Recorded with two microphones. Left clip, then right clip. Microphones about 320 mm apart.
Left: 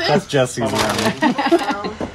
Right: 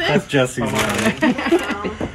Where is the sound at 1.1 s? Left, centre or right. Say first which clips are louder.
Left 2 dB; left.